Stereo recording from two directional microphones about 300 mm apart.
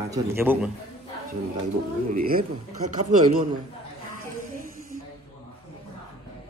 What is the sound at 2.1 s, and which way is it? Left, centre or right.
A man's voice, right.